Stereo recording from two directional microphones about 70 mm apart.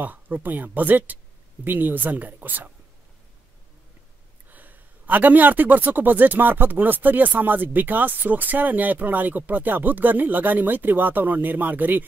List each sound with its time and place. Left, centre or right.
0.0 s speech: right
4.5 s speech: right